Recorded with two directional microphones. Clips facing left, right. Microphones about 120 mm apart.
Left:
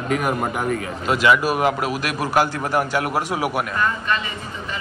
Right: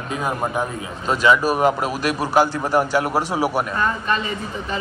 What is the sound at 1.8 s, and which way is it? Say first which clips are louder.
A man's voice: right 1 dB; 30° right (ahead or behind).